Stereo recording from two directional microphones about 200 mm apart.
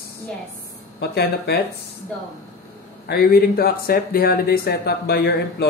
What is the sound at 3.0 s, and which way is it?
Speech, 50° left (ahead or behind).